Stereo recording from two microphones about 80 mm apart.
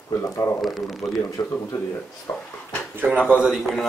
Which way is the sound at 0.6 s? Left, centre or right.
Centre.